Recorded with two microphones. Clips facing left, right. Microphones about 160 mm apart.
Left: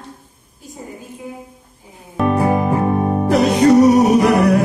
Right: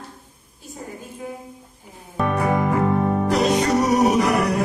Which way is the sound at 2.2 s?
25° left (ahead or behind).